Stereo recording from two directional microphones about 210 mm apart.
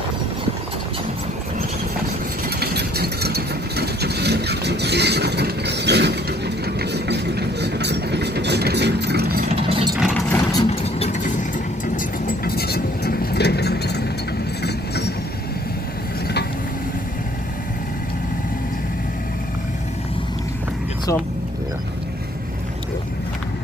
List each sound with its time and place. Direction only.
2.6 s vehicle: 50° right (ahead or behind)
9.5 s engine: 25° right (ahead or behind)
9.9 s vehicle: 5° right (ahead or behind)
10.3 s vehicle: 20° left (ahead or behind)
10.7 s vehicle: 30° left (ahead or behind); by 15.1 s 50° left (ahead or behind)